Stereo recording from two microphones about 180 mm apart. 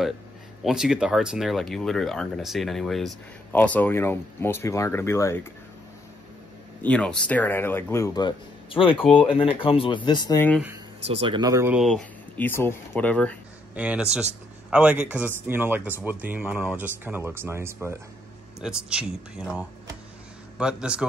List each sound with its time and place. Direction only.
0.7 s speech: 5° right (ahead or behind); by 5.4 s 15° left (ahead or behind)
6.8 s speech: 5° left (ahead or behind); by 10.4 s 25° left (ahead or behind)
11.1 s speech: 30° right (ahead or behind)
11.7 s speech: centre (ahead or behind)
13.7 s speech: 5° right (ahead or behind)